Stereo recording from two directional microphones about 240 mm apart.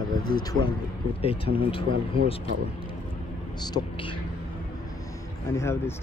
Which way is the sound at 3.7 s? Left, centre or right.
Left.